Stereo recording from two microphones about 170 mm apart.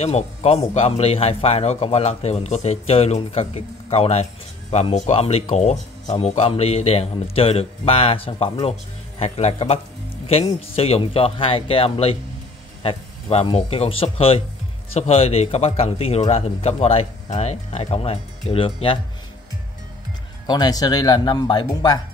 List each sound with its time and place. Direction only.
0.0 s a man's voice: 40° left (ahead or behind)
20.4 s speech: 25° left (ahead or behind)